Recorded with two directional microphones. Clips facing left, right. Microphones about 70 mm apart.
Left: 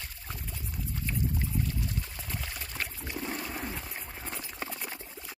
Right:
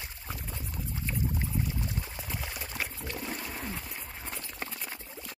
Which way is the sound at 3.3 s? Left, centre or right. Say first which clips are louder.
Left 1 dB; centre.